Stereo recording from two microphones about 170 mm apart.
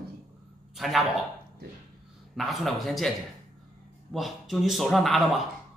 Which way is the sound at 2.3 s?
Centre (ahead or behind).